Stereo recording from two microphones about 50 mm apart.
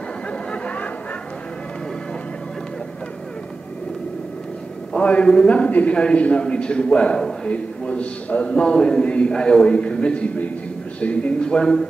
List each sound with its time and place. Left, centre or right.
0.3 s chatter: left
4.9 s a man's voice: left